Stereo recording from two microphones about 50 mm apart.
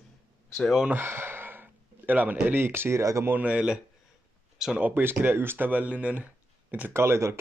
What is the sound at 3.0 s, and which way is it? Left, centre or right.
Speech, right.